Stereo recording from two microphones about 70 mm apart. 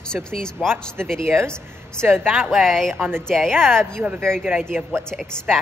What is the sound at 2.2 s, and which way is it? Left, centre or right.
Speech, centre.